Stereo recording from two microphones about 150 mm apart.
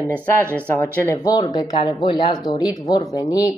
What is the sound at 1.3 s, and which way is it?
Speech, 25° left (ahead or behind).